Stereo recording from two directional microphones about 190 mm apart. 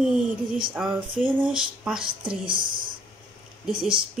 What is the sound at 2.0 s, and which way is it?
Speech, 25° right (ahead or behind).